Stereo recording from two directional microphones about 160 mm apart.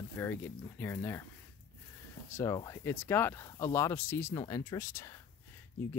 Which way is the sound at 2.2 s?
15° left (ahead or behind).